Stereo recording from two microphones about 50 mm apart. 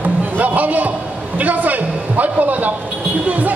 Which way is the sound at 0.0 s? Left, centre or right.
Right.